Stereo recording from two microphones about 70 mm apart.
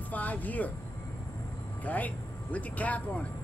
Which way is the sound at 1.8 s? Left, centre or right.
Left.